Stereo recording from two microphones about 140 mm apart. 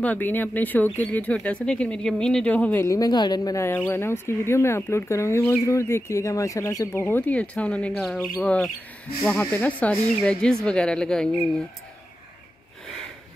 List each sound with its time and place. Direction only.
0.0 s speech: 10° left (ahead or behind)